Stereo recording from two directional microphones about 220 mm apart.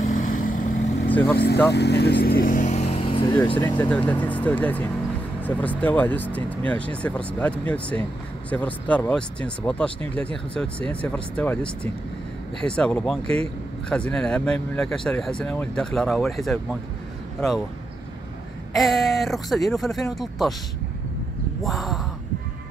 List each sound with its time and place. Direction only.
0.0 s vehicle: 35° left (ahead or behind)
1.0 s speech: 10° left (ahead or behind)
1.7 s speech: 50° left (ahead or behind); by 3.3 s 25° left (ahead or behind)
3.5 s speech: 10° left (ahead or behind)
18.8 s speech: centre (ahead or behind)
21.6 s speech: centre (ahead or behind)